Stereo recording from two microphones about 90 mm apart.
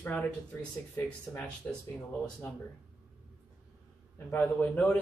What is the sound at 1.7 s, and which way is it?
Speech, 15° left (ahead or behind).